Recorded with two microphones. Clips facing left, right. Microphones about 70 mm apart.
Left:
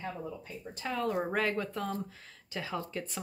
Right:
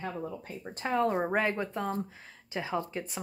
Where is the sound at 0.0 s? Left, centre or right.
Right.